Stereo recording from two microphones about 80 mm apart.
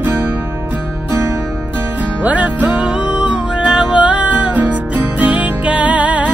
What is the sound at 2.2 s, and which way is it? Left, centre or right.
Music, centre.